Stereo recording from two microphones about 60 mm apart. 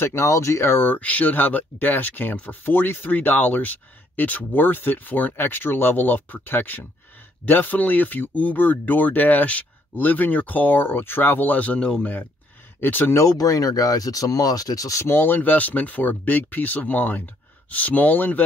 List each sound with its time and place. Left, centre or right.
0.0 s speech: left
0.9 s speech: left
12.8 s speech: left
13.2 s speech: left
15.0 s speech: left